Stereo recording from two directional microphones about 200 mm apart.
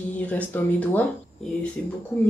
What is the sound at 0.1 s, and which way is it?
Speech, 10° left (ahead or behind).